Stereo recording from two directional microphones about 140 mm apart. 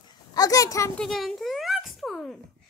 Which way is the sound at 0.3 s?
25° left (ahead or behind).